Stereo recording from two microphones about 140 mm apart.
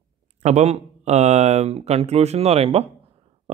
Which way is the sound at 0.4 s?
50° right (ahead or behind).